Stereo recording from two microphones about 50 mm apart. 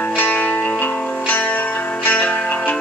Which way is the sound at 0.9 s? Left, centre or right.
Centre.